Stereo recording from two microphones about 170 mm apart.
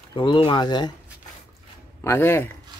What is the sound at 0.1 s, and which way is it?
Speech, 30° left (ahead or behind).